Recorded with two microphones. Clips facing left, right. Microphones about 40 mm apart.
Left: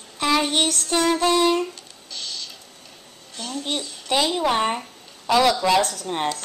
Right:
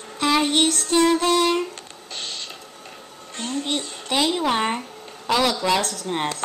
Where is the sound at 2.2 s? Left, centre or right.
Right.